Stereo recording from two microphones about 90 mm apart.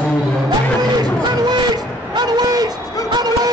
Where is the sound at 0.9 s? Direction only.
50° right (ahead or behind).